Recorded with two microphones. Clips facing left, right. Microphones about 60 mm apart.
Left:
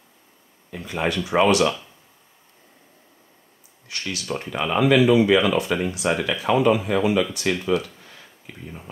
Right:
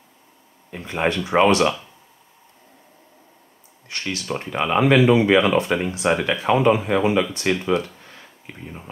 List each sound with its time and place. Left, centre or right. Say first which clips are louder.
0.7 s speech: right 2 dB; right
3.9 s speech: right 2 dB; right